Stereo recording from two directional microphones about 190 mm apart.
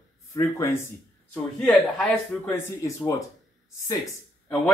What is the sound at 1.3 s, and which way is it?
Speech, 5° left (ahead or behind).